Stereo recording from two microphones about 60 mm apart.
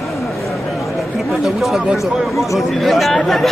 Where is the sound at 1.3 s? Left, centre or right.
Centre.